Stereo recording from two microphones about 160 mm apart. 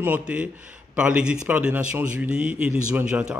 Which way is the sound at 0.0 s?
10° right (ahead or behind).